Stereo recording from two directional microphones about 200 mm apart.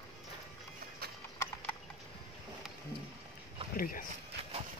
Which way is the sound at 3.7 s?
45° left (ahead or behind).